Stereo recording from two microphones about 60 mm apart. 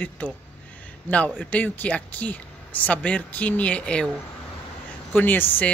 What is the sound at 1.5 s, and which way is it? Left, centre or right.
Speech, left.